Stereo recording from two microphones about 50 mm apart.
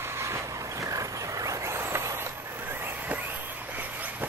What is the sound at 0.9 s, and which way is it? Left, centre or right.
Vehicle, right.